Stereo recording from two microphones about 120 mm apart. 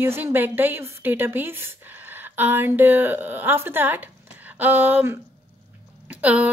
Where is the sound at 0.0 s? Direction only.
15° right (ahead or behind).